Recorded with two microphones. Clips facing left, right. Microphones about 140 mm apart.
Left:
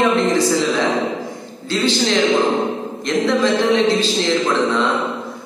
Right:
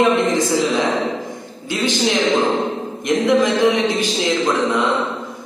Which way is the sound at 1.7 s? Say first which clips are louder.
Left 2 dB; 15° right (ahead or behind).